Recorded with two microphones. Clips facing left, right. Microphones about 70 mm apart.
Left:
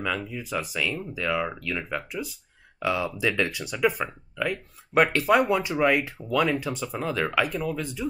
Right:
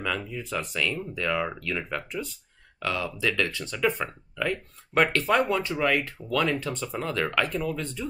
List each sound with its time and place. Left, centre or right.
0.0 s speech: centre
2.8 s speech: centre
3.9 s speech: centre